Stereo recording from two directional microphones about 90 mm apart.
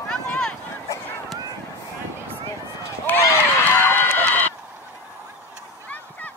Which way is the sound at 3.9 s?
25° left (ahead or behind).